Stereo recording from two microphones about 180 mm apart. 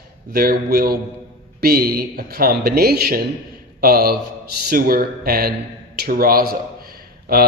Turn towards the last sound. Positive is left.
turn(degrees=-55)  # may be behind; listen again after turning